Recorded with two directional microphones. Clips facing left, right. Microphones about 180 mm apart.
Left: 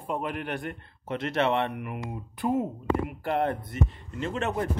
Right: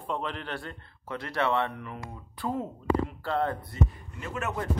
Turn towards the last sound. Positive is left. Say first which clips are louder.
# left 4 dB
turn(degrees=25)  # may be behind; listen again after turning